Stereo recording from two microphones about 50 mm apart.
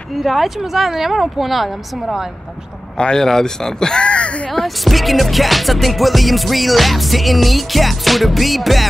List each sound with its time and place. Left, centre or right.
0.1 s music: centre
3.0 s speech: centre
4.5 s music: centre